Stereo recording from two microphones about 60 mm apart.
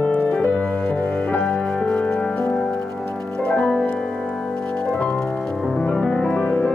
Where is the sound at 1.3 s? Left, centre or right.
Centre.